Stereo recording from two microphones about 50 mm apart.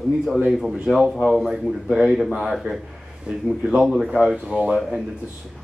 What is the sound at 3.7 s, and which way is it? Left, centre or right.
Speech, centre.